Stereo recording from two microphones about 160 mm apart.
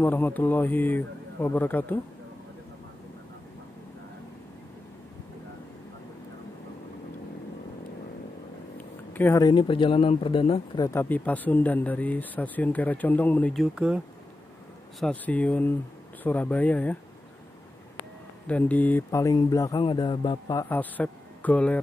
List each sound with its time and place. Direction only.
0.0 s speech: 10° left (ahead or behind)
8.7 s a sound: 10° left (ahead or behind)
9.5 s speech: 30° left (ahead or behind)
10.9 s speech: 10° left (ahead or behind)
13.6 s speech: 5° right (ahead or behind)
15.0 s speech: 5° left (ahead or behind)
18.5 s speech: 10° left (ahead or behind)
19.0 s a man's voice: 20° left (ahead or behind)
20.6 s speech: 10° left (ahead or behind)